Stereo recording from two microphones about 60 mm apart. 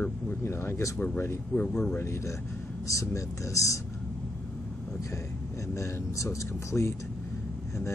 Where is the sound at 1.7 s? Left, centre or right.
Centre.